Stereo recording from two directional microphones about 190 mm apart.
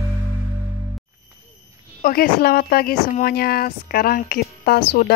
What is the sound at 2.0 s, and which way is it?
Speech, 50° left (ahead or behind).